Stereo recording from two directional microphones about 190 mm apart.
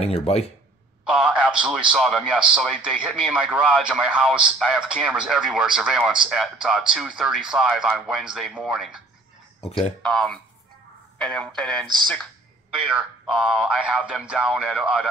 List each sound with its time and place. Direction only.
0.0 s speech: 30° left (ahead or behind)
1.0 s a man's voice: 5° right (ahead or behind)
10.0 s a man's voice: 5° left (ahead or behind)
12.9 s a man's voice: 5° right (ahead or behind)